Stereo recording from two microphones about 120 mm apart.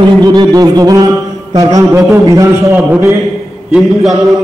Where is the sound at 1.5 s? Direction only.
25° right (ahead or behind).